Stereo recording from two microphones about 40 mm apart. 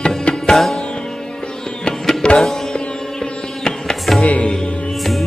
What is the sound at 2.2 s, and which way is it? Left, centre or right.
Music, left.